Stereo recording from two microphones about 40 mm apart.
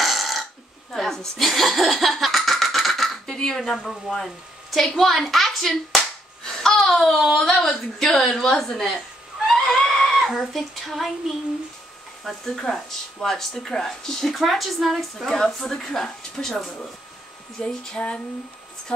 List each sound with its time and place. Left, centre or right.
0.0 s burping: centre
0.9 s a sound: centre
1.4 s laughter: centre
3.3 s a woman's voice: centre
6.4 s a sound: centre
7.0 s a woman's voice: centre
7.3 s speech: centre
9.5 s neigh: centre
10.5 s a woman's voice: centre
12.4 s speech: centre
14.3 s a woman's voice: centre
15.2 s speech: centre
17.6 s speech: left